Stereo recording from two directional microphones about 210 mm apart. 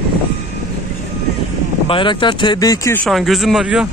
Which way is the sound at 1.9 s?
25° left (ahead or behind).